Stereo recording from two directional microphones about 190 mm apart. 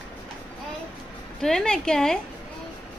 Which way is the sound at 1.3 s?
5° left (ahead or behind).